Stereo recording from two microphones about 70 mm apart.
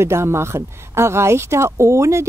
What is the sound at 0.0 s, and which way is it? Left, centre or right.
A woman's voice, right.